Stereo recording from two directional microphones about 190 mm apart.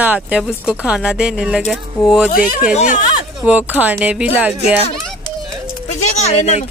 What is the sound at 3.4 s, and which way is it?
Speech, 10° right (ahead or behind).